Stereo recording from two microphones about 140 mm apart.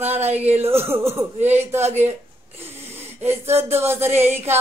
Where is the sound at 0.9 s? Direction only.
20° right (ahead or behind).